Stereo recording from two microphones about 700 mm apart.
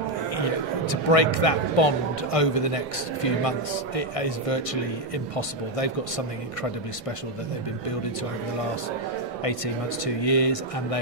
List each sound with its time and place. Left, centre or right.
0.8 s a man's voice: left
10.0 s a man's voice: left